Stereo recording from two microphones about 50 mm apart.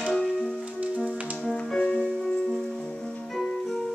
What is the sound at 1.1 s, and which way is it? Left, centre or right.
Music, right.